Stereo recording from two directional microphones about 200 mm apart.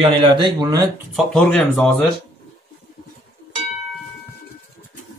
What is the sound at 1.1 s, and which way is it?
Speech, 5° left (ahead or behind).